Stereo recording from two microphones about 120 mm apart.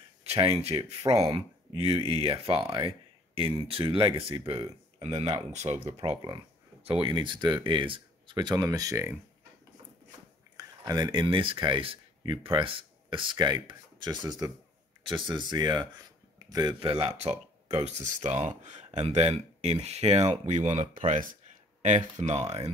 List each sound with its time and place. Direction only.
0.4 s speech: 55° right (ahead or behind)
5.5 s speech: 70° right (ahead or behind)
5.9 s speech: 40° right (ahead or behind); by 9.1 s 25° right (ahead or behind)
10.6 s speech: 35° right (ahead or behind)
16.3 s a sound: 30° right (ahead or behind)
16.8 s speech: 50° right (ahead or behind); by 18.9 s 90° right
18.9 s speech: 60° right (ahead or behind)
21.0 s speech: 90° right; by 22.6 s 65° right (ahead or behind)